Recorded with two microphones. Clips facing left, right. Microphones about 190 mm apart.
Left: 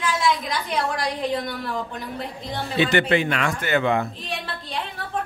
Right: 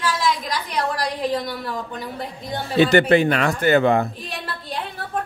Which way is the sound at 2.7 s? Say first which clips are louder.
Right 5 dB; 40° right (ahead or behind).